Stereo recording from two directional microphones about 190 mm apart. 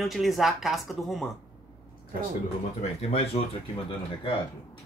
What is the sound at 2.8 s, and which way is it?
Speech, 35° left (ahead or behind).